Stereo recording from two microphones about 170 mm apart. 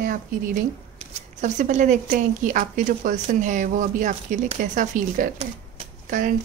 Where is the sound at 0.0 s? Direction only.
50° right (ahead or behind).